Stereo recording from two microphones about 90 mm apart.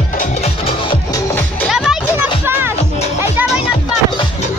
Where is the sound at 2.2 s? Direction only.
25° right (ahead or behind).